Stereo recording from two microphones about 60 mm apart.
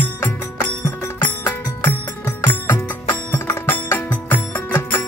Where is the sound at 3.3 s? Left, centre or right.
Left.